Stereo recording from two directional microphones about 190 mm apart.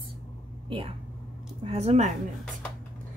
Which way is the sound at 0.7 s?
30° right (ahead or behind).